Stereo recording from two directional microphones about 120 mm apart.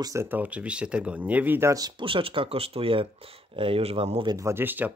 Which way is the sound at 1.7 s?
35° right (ahead or behind).